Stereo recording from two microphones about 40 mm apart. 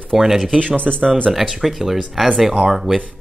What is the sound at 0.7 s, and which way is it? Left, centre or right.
Speech, right.